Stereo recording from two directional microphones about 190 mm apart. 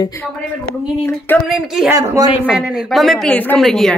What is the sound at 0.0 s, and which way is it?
Speech, 15° left (ahead or behind).